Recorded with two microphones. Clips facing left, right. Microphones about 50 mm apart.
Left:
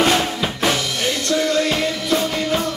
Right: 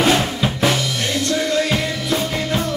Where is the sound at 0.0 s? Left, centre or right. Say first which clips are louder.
Right 1 dB; centre.